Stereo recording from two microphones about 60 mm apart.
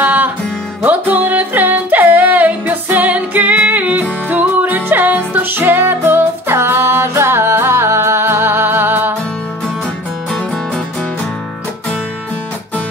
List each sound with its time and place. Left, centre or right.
0.0 s music: right